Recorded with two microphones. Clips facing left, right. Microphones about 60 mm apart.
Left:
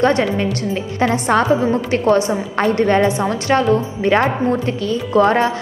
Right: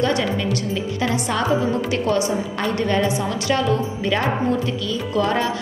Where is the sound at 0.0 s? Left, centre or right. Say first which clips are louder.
Left 5 dB; left.